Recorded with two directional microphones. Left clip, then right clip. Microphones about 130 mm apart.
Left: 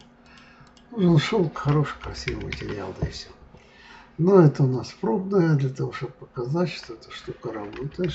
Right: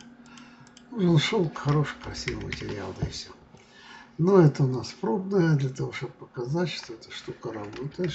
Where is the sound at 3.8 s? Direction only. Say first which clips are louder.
Left 3 dB; 5° left (ahead or behind).